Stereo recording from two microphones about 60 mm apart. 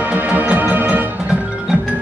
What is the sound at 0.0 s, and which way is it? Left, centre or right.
Music, right.